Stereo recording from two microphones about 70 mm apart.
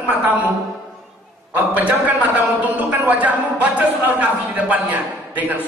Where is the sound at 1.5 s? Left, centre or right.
Right.